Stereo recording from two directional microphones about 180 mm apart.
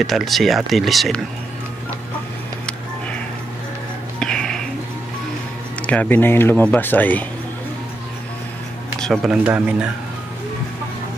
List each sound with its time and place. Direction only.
0.0 s speech: centre (ahead or behind)
4.2 s a sound: 5° left (ahead or behind)
5.8 s speech: 5° left (ahead or behind)
9.0 s speech: centre (ahead or behind)